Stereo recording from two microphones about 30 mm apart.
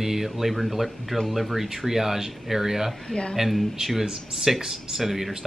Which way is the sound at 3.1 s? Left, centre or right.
Left.